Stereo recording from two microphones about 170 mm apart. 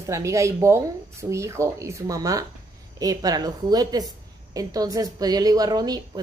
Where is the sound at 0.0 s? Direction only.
20° right (ahead or behind).